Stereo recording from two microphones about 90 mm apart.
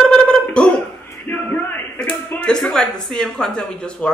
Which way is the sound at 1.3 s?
20° left (ahead or behind).